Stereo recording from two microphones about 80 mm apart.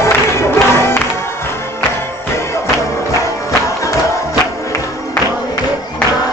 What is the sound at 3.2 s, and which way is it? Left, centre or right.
Music, left.